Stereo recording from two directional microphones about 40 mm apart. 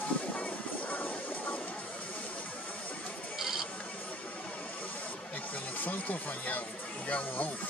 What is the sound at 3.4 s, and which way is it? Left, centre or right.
Clock, centre.